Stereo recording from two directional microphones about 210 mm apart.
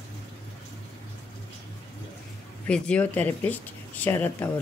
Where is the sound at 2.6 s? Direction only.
5° left (ahead or behind).